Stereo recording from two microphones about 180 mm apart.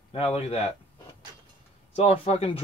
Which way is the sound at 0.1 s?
30° left (ahead or behind).